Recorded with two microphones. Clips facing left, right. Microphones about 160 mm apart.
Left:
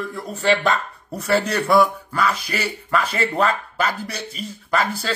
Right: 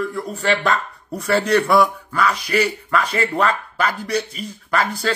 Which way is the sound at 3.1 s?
30° left (ahead or behind).